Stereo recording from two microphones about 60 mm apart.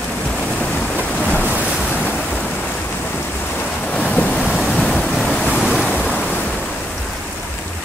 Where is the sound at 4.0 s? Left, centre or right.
Left.